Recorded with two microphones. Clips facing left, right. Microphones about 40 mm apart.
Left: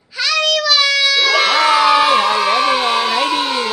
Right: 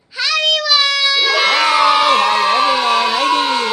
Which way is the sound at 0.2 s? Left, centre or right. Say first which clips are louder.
Even; centre.